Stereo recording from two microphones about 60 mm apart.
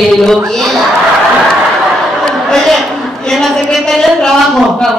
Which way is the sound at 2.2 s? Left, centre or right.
Centre.